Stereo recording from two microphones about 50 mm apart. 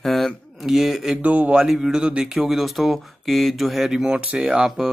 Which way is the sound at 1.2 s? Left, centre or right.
Right.